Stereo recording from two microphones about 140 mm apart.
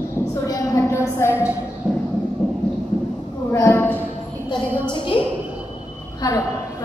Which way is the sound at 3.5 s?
20° left (ahead or behind).